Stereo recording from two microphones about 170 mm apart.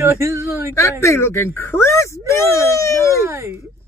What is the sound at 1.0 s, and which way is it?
A man's voice, 15° left (ahead or behind).